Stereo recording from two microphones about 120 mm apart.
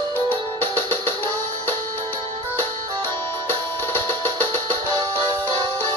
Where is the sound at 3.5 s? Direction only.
20° left (ahead or behind).